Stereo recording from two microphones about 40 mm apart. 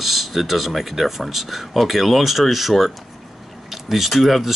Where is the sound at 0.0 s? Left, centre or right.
Centre.